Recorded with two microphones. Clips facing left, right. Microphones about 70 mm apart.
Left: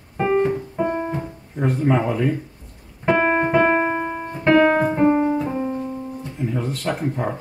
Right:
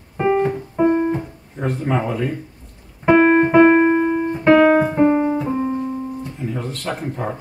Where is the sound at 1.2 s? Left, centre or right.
Centre.